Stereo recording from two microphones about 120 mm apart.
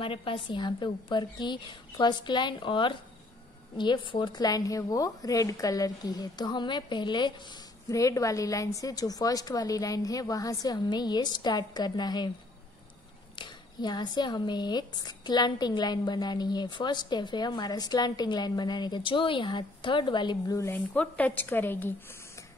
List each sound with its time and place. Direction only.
0.0 s speech: 50° left (ahead or behind)
7.9 s speech: 25° left (ahead or behind)
13.4 s speech: 35° left (ahead or behind)
20.5 s speech: 20° left (ahead or behind)
20.9 s a woman's voice: 10° left (ahead or behind)